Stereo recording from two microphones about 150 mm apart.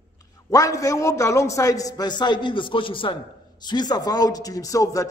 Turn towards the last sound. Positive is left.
turn(degrees=20)  # may be behind; listen again after turning